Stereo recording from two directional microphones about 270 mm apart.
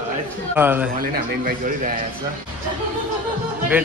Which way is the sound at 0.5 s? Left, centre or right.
Centre.